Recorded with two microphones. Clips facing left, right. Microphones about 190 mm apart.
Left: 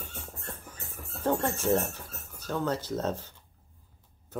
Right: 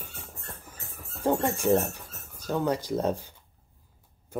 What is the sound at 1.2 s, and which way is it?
Speech, 10° right (ahead or behind).